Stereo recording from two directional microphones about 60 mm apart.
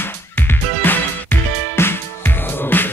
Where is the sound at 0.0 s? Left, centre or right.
Left.